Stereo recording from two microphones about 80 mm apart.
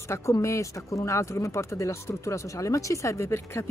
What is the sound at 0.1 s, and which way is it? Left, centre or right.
Speech, left.